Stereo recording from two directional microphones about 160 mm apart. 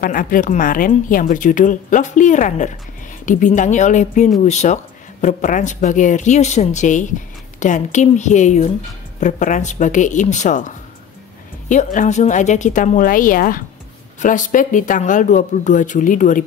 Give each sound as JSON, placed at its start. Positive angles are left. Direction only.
{"t": 0.0, "sound": "a woman's voice", "side_deg": 60}
{"t": 11.7, "sound": "speech", "side_deg": 50}